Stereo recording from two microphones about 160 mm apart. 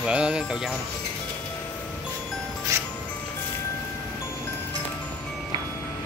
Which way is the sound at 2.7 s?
20° right (ahead or behind).